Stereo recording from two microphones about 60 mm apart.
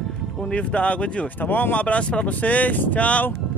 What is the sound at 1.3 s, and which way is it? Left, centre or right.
Speech, left.